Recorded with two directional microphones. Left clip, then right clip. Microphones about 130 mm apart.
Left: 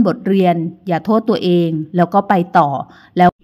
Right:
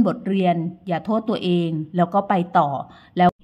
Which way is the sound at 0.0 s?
35° left (ahead or behind).